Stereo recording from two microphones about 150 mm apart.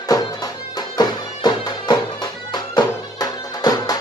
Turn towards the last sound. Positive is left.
turn(degrees=25)  # may be behind; listen again after turning